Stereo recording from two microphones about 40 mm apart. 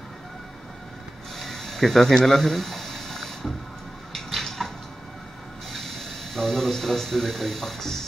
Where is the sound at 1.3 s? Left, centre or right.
Centre.